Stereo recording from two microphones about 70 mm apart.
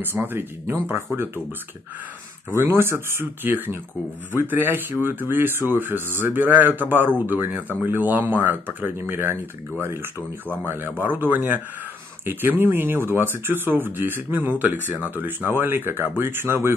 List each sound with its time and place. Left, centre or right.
0.0 s speech: right
2.5 s speech: right